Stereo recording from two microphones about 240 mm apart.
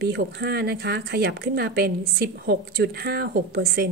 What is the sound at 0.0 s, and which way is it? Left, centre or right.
Speech, right.